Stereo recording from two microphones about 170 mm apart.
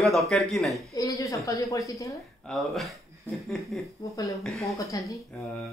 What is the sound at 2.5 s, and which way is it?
Mantra, centre (ahead or behind).